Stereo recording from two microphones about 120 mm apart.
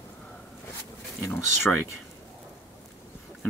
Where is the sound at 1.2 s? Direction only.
20° left (ahead or behind).